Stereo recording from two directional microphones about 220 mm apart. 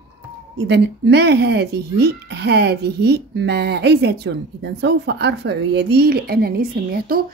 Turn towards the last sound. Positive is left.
turn(degrees=-40)  # may be behind; listen again after turning